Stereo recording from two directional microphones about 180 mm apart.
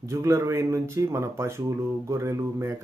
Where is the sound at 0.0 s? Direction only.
15° right (ahead or behind).